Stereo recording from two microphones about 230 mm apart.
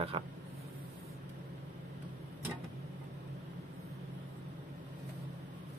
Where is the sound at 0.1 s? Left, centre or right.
Right.